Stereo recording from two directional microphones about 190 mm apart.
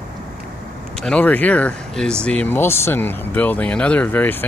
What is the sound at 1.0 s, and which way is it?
Speech, 5° left (ahead or behind).